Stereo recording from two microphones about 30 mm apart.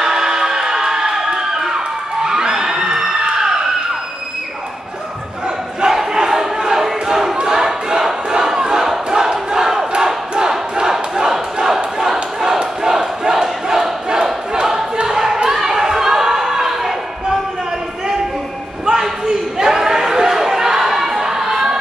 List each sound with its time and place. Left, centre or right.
0.0 s a sound: centre
2.2 s crowd: right
5.8 s crowd: right
6.1 s battle cry: centre
7.5 s crowd: centre
10.5 s battle cry: centre
12.8 s crowd: centre
14.5 s battle cry: centre
15.0 s a sound: centre
19.2 s a sound: centre